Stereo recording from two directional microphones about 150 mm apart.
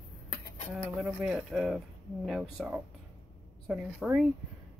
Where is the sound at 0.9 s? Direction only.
Centre (ahead or behind).